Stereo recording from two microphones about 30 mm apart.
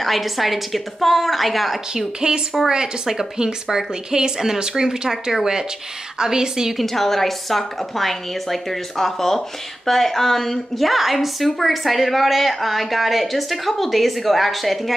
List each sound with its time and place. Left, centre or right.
0.0 s a woman's voice: centre
2.1 s a woman's voice: right
6.8 s a woman's voice: centre
10.9 s a woman's voice: centre